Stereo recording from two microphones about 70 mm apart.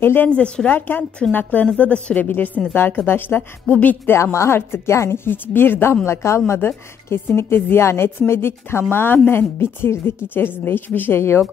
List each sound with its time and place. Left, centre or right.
0.0 s a woman's voice: left
0.4 s a woman's voice: centre
4.1 s a woman's voice: left